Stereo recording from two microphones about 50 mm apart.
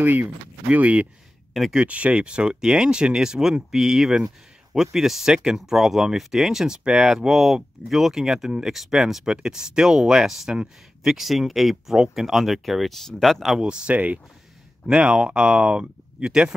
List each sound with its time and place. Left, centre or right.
0.0 s speech: right
1.5 s speech: centre
1.9 s speech: right
8.7 s speech: centre
13.6 s speech: centre